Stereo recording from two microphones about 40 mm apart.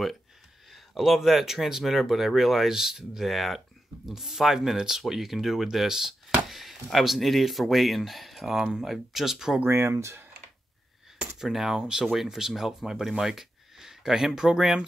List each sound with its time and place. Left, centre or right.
0.7 s speech: centre
9.7 s speech: right
11.3 s speech: centre